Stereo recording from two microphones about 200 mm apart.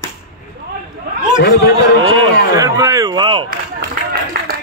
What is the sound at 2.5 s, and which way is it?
Speech, 15° right (ahead or behind).